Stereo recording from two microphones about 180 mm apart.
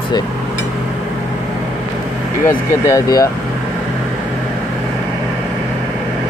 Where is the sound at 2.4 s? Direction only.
15° left (ahead or behind).